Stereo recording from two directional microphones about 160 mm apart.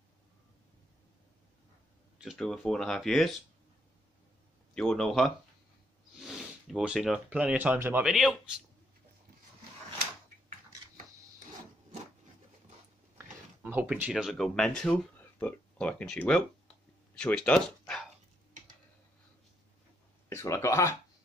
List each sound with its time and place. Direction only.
2.1 s speech: centre (ahead or behind)
4.7 s speech: 5° left (ahead or behind)
13.6 s speech: 10° right (ahead or behind); by 17.6 s 5° left (ahead or behind)
17.6 s dog: 5° left (ahead or behind)
20.2 s speech: 15° left (ahead or behind)